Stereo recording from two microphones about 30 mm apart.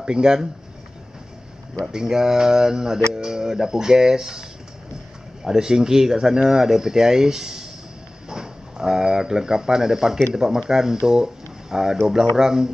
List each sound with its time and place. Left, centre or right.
0.0 s speech: right
1.9 s speech: right